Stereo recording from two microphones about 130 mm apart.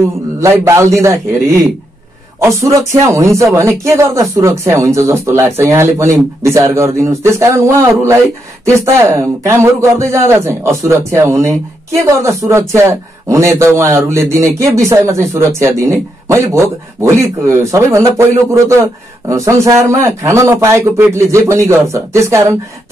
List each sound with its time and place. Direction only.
0.4 s a man's voice: 20° right (ahead or behind)